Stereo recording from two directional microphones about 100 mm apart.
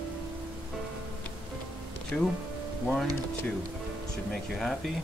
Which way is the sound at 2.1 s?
15° left (ahead or behind).